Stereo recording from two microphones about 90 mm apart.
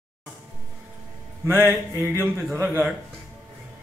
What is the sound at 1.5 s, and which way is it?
A man's voice, 25° right (ahead or behind).